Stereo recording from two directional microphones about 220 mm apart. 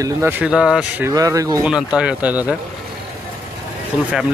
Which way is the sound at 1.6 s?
5° right (ahead or behind).